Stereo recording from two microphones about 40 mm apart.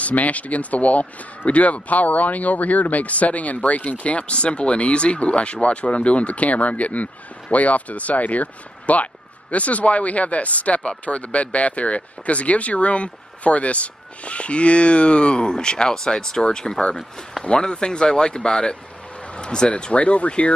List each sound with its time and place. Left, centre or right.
0.0 s speech: left
16.9 s speech: centre
17.5 s speech: left